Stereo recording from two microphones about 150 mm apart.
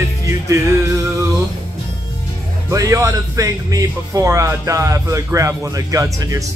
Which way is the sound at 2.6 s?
20° right (ahead or behind).